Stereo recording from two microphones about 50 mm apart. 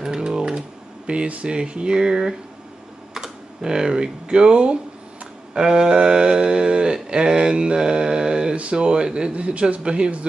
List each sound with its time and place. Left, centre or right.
0.0 s typing: centre
3.2 s speech: centre
5.5 s a sound: centre